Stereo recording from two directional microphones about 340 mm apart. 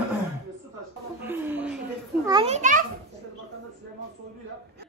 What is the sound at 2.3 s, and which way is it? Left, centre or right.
Children playing, centre.